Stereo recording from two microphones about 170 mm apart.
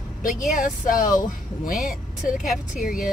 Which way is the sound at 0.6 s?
50° left (ahead or behind).